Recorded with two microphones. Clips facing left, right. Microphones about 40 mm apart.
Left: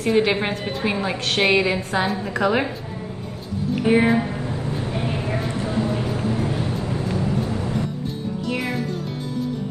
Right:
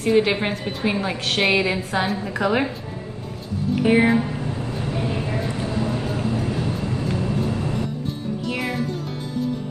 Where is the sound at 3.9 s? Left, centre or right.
Centre.